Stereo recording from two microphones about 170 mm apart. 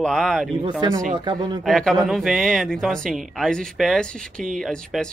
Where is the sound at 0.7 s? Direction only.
25° right (ahead or behind).